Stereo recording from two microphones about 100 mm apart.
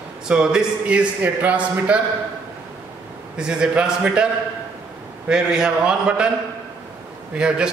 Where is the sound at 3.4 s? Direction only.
10° right (ahead or behind).